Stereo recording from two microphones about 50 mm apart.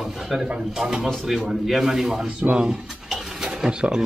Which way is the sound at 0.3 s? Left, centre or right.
Centre.